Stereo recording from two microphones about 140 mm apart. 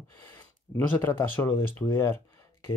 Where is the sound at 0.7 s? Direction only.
15° left (ahead or behind).